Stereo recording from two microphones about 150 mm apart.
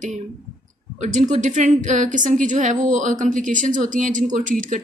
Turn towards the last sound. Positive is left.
turn(degrees=-60)  # may be behind; listen again after turning